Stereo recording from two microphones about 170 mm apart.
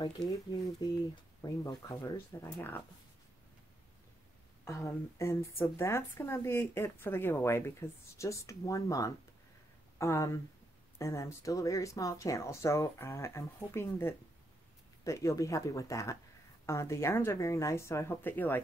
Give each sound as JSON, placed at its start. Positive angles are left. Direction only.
{"t": 0.3, "sound": "speech", "side_deg": 20}
{"t": 4.6, "sound": "speech", "side_deg": 15}